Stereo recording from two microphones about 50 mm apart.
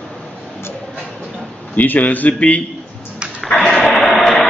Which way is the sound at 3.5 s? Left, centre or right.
Centre.